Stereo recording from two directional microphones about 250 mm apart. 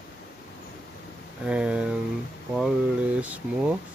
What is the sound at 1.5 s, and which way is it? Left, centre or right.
Speech, centre.